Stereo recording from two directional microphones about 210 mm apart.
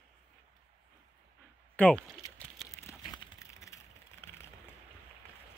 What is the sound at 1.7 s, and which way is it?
Speech, 5° left (ahead or behind).